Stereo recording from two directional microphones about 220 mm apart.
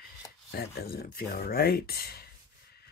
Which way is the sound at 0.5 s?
45° left (ahead or behind).